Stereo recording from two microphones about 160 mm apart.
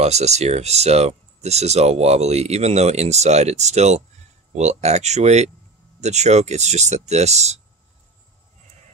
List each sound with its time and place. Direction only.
0.0 s speech: 45° right (ahead or behind)